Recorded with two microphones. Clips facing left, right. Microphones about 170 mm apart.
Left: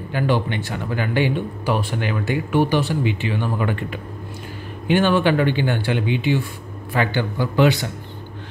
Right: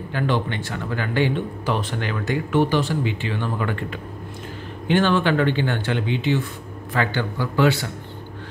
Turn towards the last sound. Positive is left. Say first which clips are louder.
# left 2 dB
turn(degrees=20)  # may be behind; listen again after turning